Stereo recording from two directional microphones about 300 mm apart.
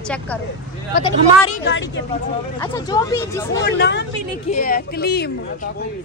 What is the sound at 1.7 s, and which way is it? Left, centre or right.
Speech, left.